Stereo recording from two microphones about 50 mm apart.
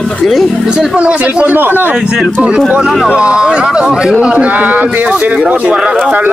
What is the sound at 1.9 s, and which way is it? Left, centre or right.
Speech, centre.